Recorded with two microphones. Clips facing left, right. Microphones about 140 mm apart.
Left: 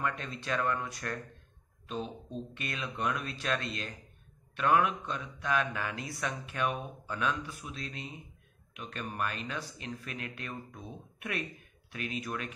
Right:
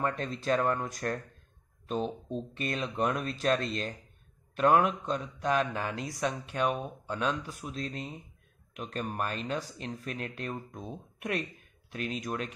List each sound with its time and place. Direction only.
0.0 s speech: 35° right (ahead or behind)